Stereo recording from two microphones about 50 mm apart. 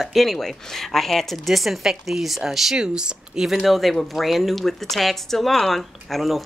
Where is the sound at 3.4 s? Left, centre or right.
Centre.